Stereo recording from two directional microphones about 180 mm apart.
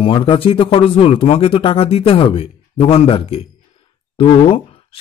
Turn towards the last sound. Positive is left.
turn(degrees=30)  # may be behind; listen again after turning